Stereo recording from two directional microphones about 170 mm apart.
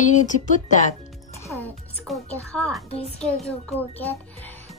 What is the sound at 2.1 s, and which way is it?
Music, centre (ahead or behind).